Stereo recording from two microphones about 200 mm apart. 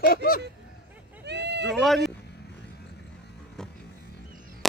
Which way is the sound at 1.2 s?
60° right (ahead or behind).